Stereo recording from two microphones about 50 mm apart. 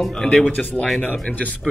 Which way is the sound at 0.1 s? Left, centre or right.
Centre.